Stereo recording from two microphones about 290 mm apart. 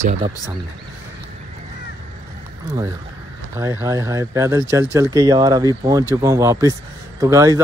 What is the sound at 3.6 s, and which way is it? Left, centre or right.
Speech, centre.